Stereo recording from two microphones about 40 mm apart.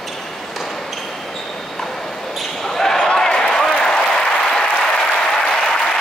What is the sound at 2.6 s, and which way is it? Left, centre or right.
Basketball bounce, centre.